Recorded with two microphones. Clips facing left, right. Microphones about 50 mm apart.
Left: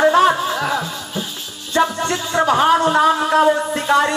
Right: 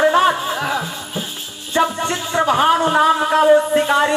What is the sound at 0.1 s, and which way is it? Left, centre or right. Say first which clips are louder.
Music: left 1 dB; centre.